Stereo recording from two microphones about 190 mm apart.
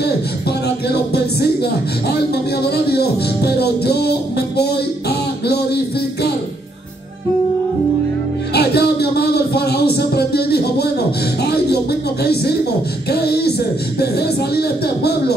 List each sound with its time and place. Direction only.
0.8 s music: 60° left (ahead or behind)
8.5 s music: 55° left (ahead or behind)
13.1 s a sound: 55° left (ahead or behind)
13.9 s music: 55° left (ahead or behind)